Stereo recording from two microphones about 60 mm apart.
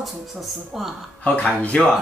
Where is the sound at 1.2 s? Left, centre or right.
Left.